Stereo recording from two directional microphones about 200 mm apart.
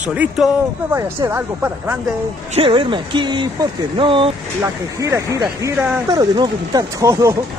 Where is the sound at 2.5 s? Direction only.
25° right (ahead or behind).